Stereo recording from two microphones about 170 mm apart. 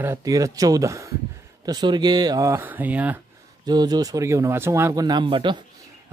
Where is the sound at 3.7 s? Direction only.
25° right (ahead or behind).